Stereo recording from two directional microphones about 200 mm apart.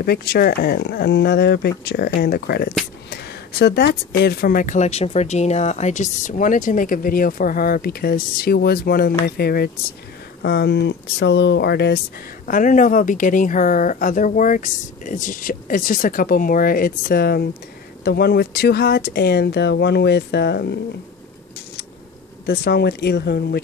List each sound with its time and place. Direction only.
0.0 s speech: 50° left (ahead or behind)
12.4 s speech: 40° left (ahead or behind)
22.5 s speech: 55° left (ahead or behind)